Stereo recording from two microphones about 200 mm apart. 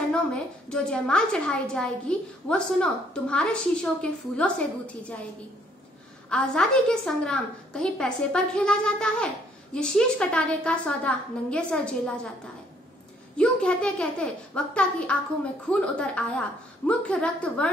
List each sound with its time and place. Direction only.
0.1 s a woman's voice: 5° left (ahead or behind)
6.3 s a woman's voice: 5° left (ahead or behind)
13.4 s a woman's voice: 5° left (ahead or behind)